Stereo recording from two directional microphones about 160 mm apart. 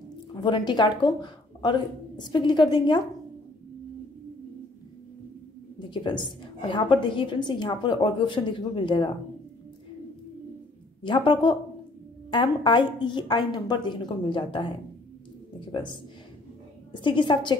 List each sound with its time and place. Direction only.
0.4 s speech: 30° left (ahead or behind)
5.8 s a woman's voice: 30° left (ahead or behind)
11.1 s a woman's voice: 30° left (ahead or behind)
15.7 s a woman's voice: 30° left (ahead or behind)